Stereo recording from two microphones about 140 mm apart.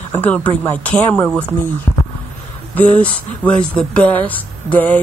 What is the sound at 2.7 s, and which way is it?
Speech, 10° left (ahead or behind).